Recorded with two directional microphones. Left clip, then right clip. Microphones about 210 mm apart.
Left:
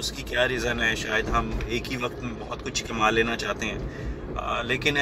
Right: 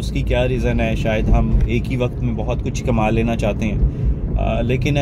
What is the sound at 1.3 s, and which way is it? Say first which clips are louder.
Speech: right 3 dB; 30° left (ahead or behind).